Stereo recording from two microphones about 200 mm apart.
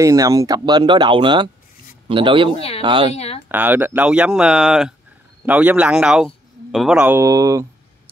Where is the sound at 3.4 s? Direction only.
10° right (ahead or behind).